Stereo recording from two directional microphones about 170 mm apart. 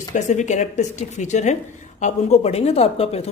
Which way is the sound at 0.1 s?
45° left (ahead or behind).